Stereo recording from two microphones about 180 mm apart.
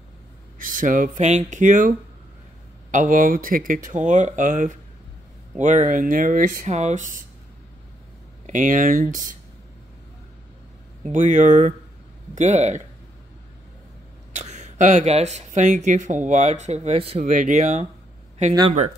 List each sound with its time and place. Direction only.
0.6 s speech: 50° right (ahead or behind)
8.5 s speech: 45° right (ahead or behind)
11.1 s speech: 45° right (ahead or behind)
14.4 s speech: 40° right (ahead or behind)